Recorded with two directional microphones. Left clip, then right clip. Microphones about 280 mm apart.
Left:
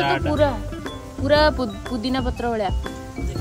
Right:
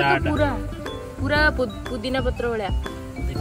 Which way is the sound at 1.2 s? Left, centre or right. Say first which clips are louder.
Left 3 dB; left.